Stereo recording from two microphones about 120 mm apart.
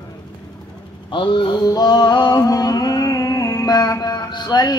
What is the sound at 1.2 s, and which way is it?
Music, 40° left (ahead or behind).